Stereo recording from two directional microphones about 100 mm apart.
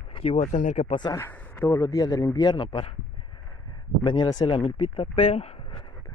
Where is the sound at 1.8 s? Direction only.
35° left (ahead or behind).